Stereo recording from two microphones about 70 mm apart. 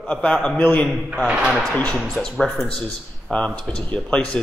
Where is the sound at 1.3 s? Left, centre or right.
Centre.